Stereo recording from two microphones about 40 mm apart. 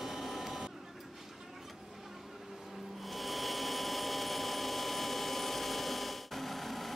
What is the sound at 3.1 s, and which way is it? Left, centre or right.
Tools, centre.